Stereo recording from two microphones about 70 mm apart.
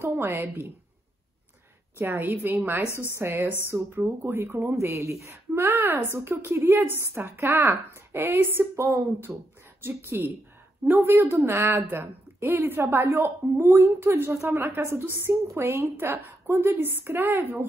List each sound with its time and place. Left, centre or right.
0.0 s a woman's voice: right
2.0 s a woman's voice: right
2.9 s a woman's voice: left
3.2 s a woman's voice: right